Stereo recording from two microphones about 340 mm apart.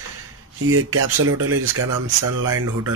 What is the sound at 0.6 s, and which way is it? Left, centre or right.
Speech, right.